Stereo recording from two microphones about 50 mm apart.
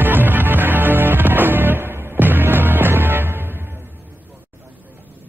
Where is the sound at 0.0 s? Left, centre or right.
Right.